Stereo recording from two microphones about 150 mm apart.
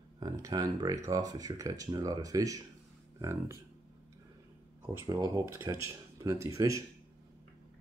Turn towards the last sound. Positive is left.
turn(degrees=-20)  # may be behind; listen again after turning